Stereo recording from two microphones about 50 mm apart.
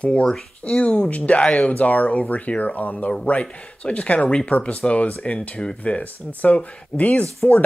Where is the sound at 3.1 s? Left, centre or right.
Left.